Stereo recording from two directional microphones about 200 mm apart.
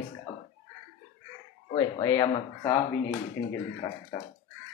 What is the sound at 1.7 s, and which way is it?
Speech, 20° left (ahead or behind).